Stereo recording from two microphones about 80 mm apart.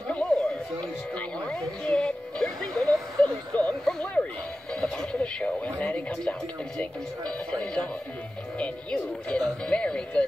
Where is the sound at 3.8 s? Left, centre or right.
Centre.